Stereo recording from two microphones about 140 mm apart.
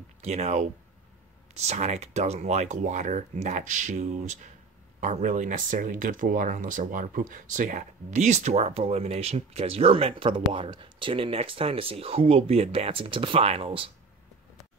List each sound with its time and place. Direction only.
0.2 s speech: 55° right (ahead or behind)